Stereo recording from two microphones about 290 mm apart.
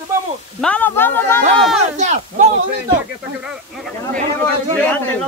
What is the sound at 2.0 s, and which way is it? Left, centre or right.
Speech, right.